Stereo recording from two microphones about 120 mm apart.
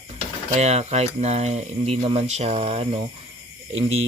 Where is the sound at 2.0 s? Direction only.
45° right (ahead or behind).